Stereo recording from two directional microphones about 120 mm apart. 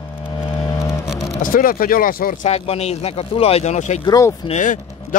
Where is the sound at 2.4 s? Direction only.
60° left (ahead or behind).